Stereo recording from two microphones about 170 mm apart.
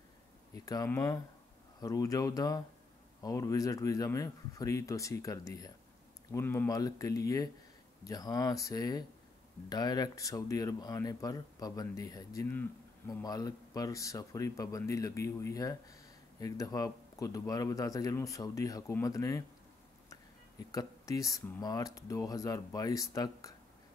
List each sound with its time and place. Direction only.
0.7 s speech: 15° left (ahead or behind)
20.7 s speech: 20° left (ahead or behind)